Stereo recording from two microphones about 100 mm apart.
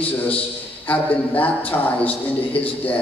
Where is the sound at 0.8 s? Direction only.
15° left (ahead or behind).